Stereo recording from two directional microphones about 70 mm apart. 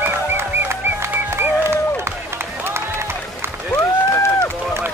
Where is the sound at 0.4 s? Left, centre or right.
Right.